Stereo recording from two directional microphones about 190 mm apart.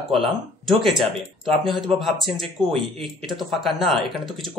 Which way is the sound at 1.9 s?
Centre (ahead or behind).